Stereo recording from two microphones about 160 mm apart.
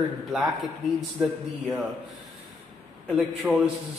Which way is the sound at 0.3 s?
Centre (ahead or behind).